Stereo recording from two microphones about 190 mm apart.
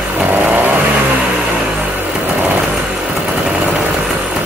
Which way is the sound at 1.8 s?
10° right (ahead or behind).